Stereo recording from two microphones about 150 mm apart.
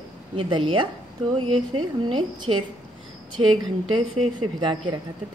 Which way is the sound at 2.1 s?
30° right (ahead or behind).